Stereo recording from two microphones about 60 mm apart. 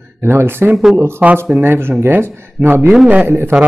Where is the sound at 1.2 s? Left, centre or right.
Right.